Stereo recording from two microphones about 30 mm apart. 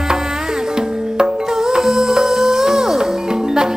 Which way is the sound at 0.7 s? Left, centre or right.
Right.